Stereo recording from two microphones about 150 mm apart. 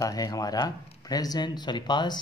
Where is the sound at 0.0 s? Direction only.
25° left (ahead or behind).